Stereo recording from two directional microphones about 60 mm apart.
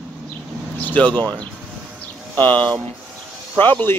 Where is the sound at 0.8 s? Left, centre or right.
Left.